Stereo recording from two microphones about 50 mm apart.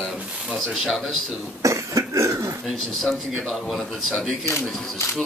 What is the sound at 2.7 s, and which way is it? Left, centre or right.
Speech, centre.